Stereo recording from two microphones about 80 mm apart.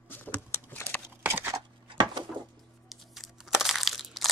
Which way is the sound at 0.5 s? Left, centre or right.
Left.